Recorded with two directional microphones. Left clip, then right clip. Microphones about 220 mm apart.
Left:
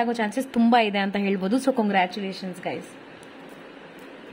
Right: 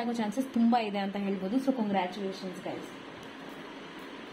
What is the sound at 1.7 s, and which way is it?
Speech, 50° left (ahead or behind).